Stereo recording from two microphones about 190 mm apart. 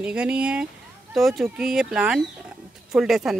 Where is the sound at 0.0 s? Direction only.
5° right (ahead or behind).